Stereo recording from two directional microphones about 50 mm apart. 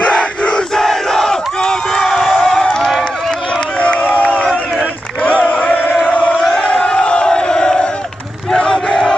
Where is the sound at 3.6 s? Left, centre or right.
Left.